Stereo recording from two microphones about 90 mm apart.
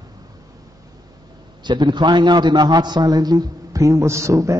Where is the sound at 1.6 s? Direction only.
55° right (ahead or behind).